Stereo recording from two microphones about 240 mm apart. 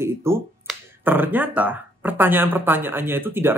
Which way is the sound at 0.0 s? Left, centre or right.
Centre.